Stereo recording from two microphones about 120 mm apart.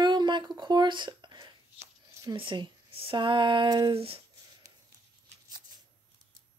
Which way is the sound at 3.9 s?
55° right (ahead or behind).